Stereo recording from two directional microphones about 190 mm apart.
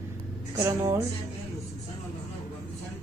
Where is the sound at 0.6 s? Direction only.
15° right (ahead or behind).